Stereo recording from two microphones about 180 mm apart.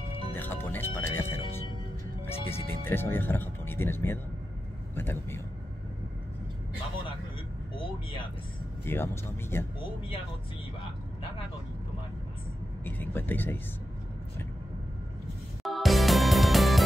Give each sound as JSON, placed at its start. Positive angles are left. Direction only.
{"t": 0.3, "sound": "speech", "side_deg": 10}
{"t": 7.7, "sound": "vehicle", "side_deg": 25}
{"t": 8.8, "sound": "speech", "side_deg": 15}
{"t": 12.8, "sound": "vehicle", "side_deg": 10}
{"t": 15.6, "sound": "music", "side_deg": 0}